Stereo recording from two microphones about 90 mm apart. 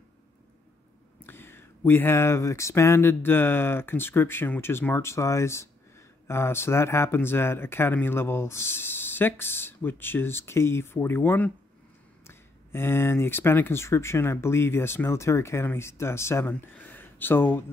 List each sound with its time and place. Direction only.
1.2 s speech: 25° left (ahead or behind)